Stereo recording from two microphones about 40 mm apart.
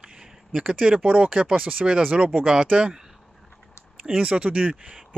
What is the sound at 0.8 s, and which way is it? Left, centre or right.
Speech, right.